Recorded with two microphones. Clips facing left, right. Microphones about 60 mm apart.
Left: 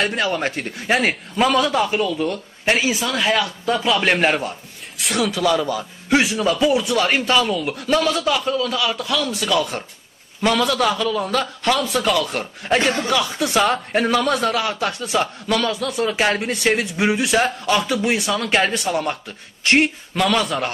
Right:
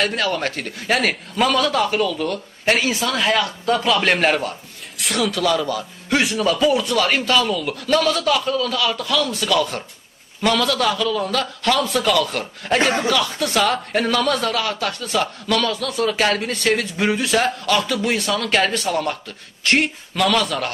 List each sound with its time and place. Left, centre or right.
0.1 s a man's voice: centre